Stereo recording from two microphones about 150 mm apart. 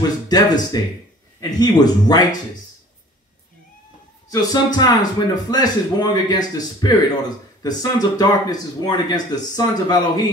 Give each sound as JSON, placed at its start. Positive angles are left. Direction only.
{"t": 0.3, "sound": "speech", "side_deg": 25}
{"t": 4.3, "sound": "speech", "side_deg": 25}